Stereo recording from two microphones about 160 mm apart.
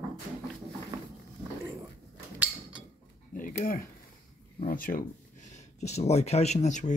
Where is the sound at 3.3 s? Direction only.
55° left (ahead or behind).